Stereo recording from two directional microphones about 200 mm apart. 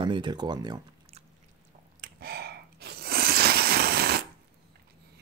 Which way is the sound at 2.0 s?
50° right (ahead or behind).